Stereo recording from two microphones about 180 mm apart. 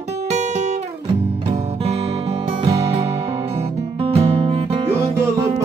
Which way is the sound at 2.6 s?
35° right (ahead or behind).